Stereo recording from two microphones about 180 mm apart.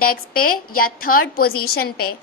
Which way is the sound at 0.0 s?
55° left (ahead or behind).